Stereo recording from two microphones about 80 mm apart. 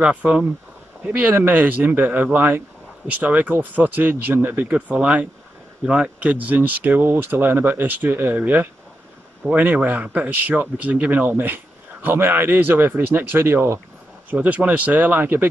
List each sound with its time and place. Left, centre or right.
0.0 s a man's voice: centre
14.3 s a man's voice: centre